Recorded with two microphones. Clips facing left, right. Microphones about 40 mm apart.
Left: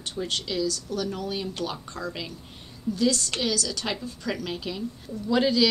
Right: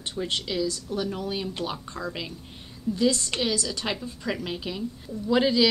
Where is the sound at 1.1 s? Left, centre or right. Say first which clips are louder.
Even; centre.